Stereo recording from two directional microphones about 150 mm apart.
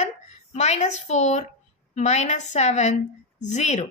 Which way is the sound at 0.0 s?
50° left (ahead or behind).